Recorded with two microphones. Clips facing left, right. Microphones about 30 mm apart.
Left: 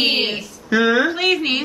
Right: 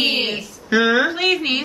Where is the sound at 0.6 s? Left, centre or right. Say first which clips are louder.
Even; centre.